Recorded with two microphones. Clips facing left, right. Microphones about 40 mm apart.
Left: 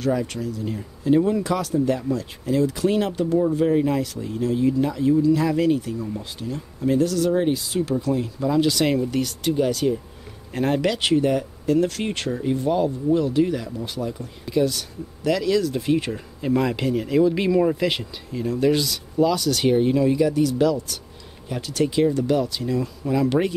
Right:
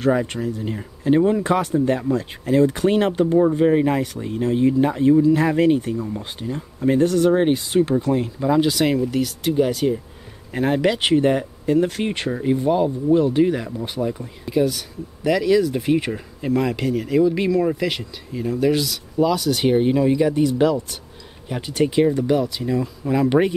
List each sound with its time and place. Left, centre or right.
0.0 s speech: right
8.4 s speech: right
11.1 s speech: right
11.6 s speech: right
14.4 s speech: centre
16.3 s speech: centre
18.3 s speech: centre